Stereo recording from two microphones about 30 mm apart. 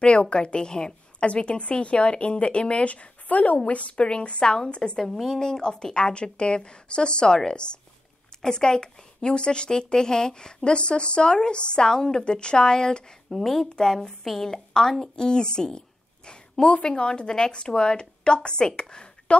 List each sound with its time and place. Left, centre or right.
0.0 s speech: left
1.2 s speech: left
3.9 s speech: left
4.9 s a woman's voice: centre
5.4 s speech: left
8.4 s speech: left
13.3 s a woman's voice: centre
16.3 s a sound: left
16.8 s speech: left
18.8 s a sound: left